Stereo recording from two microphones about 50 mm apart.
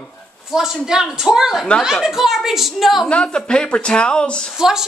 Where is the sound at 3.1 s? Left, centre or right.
Centre.